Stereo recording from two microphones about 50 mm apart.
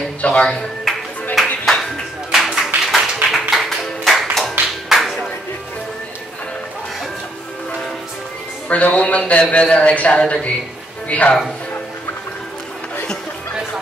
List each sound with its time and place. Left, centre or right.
0.2 s speech: centre
0.9 s music: centre
8.6 s speech: left